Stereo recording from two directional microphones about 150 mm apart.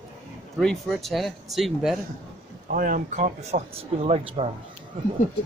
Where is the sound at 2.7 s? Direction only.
65° right (ahead or behind); by 4.5 s 45° right (ahead or behind).